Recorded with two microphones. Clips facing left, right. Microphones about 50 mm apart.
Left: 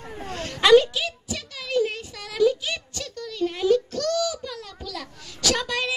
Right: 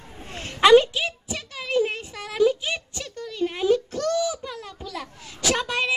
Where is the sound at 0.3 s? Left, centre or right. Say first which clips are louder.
Right 1 dB; right.